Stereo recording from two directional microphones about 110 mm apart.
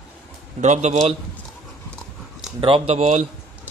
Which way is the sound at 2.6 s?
60° right (ahead or behind).